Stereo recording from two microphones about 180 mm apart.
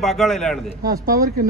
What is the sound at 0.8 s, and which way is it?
Speech, 55° right (ahead or behind).